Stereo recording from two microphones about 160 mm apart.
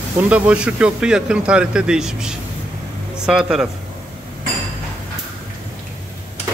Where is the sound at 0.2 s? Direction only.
10° right (ahead or behind).